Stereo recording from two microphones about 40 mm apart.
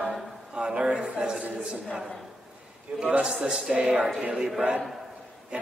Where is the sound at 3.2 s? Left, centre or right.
Centre.